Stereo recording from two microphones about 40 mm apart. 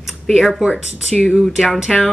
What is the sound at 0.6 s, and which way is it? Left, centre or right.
Speech, centre.